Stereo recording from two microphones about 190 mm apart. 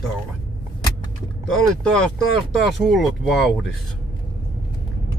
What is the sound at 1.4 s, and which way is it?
Speech, 5° left (ahead or behind).